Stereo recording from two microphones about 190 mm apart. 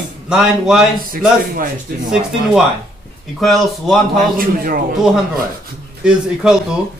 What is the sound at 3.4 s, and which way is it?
Speech, centre (ahead or behind).